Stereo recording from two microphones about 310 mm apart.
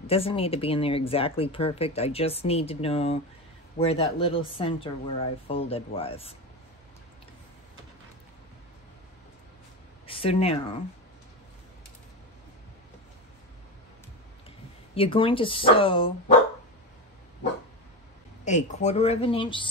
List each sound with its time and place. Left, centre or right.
0.0 s speech: centre
10.0 s speech: centre
15.0 s speech: centre
18.4 s a woman's voice: left